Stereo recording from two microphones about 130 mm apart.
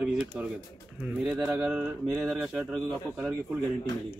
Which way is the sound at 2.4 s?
5° left (ahead or behind).